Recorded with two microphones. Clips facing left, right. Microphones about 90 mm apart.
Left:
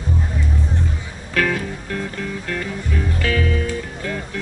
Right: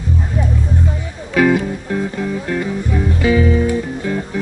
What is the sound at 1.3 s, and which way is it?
Music, 15° right (ahead or behind).